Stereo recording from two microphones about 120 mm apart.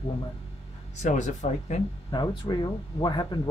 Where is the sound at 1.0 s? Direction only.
85° left.